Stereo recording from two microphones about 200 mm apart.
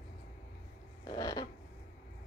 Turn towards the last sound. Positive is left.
turn(degrees=20)  # may be behind; listen again after turning